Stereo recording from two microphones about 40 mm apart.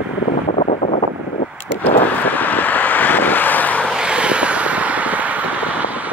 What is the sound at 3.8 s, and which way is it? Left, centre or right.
Vehicle, right.